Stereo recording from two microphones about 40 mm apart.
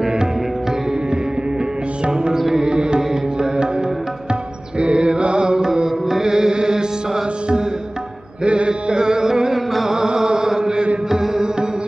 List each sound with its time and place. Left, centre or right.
2.3 s music: centre
2.6 s music: right
4.7 s music: right
8.5 s music: right
9.8 s mantra: centre
11.1 s music: centre